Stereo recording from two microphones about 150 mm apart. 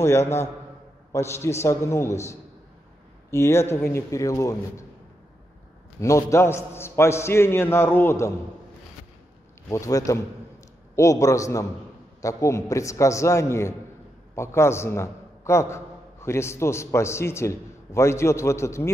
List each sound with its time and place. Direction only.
1.1 s a man's voice: 20° left (ahead or behind)
5.9 s a man's voice: 20° left (ahead or behind)
9.7 s a man's voice: 20° left (ahead or behind)